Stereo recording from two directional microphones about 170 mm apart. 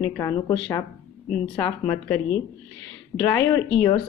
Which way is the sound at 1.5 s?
15° left (ahead or behind).